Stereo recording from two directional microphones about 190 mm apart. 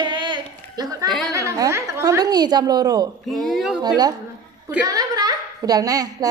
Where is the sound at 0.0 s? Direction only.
25° right (ahead or behind).